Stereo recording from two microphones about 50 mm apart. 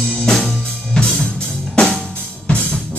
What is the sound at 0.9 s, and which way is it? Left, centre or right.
Music, centre.